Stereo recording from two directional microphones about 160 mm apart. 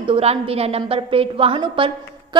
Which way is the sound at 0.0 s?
35° right (ahead or behind).